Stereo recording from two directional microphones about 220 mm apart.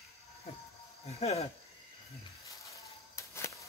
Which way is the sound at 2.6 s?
15° left (ahead or behind).